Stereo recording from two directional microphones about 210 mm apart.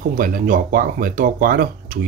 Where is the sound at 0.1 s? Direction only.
40° right (ahead or behind).